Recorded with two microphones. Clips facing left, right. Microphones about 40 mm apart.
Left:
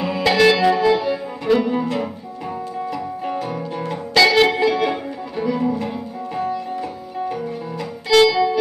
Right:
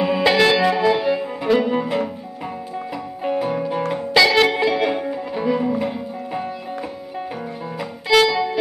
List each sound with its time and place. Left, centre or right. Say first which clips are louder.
0.0 s music: even; centre
3.3 s music: right 7 dB; centre
8.1 s music: left 2 dB; centre